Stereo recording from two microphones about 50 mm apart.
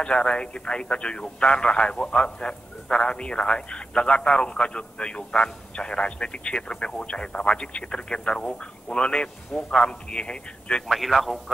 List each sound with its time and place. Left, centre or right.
0.0 s a man's voice: centre
10.9 s a man's voice: centre